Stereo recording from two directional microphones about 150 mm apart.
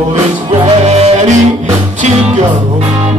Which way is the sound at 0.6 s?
45° right (ahead or behind).